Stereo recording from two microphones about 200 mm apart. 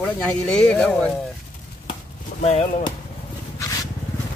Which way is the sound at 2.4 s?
35° left (ahead or behind).